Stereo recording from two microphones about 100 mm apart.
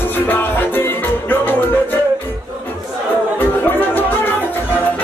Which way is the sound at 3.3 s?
20° left (ahead or behind).